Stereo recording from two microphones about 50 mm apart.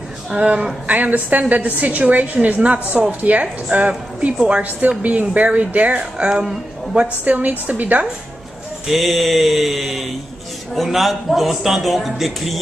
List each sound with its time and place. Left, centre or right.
0.3 s a woman's voice: right
6.4 s a woman's voice: centre
7.2 s a woman's voice: right
8.8 s a man's voice: centre